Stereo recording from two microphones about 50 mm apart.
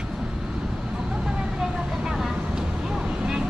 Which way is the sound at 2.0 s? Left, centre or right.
Centre.